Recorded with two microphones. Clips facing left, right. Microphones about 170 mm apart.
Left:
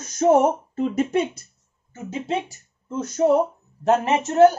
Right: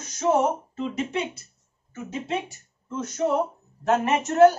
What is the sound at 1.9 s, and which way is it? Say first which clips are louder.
Speech: left 3 dB; 35° left (ahead or behind).